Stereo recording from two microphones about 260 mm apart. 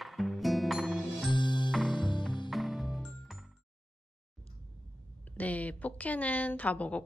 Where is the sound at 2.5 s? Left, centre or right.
Centre.